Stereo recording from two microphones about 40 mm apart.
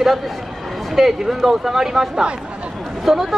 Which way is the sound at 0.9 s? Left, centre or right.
Centre.